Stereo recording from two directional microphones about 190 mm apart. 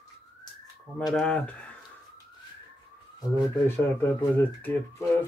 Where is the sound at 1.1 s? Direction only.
5° left (ahead or behind).